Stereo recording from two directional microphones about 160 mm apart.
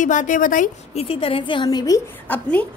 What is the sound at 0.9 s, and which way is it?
A woman's voice, 35° left (ahead or behind).